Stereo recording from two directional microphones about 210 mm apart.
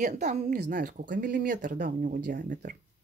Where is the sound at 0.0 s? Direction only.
35° right (ahead or behind).